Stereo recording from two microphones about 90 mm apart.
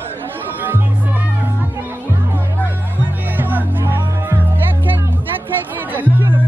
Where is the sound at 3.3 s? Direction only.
20° right (ahead or behind).